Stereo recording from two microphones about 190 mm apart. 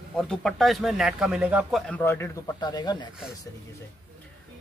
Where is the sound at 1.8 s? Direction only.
10° left (ahead or behind).